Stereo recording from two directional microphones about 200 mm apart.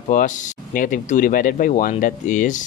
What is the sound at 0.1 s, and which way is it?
Speech, 40° left (ahead or behind).